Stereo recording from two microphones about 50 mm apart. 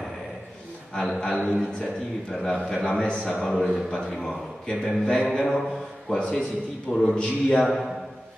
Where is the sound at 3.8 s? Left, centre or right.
Centre.